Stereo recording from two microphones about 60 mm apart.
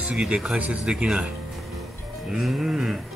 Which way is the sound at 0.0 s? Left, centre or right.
Centre.